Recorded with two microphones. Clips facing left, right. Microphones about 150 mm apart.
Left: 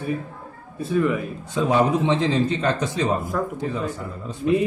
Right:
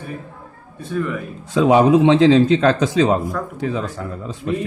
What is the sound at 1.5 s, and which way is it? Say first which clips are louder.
A man's voice: right 7 dB; 90° right.